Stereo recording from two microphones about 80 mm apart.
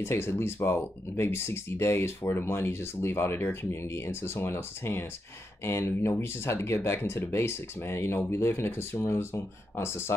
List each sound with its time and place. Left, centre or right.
0.0 s speech: left